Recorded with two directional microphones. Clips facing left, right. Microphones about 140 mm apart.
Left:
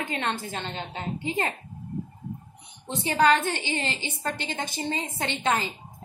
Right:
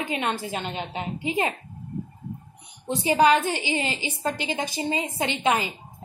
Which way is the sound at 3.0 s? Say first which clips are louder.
Right 2 dB; 10° right (ahead or behind).